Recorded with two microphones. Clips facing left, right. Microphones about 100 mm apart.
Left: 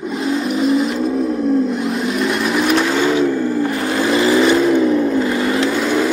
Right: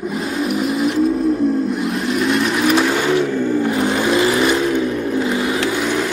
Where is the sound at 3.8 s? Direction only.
Centre (ahead or behind).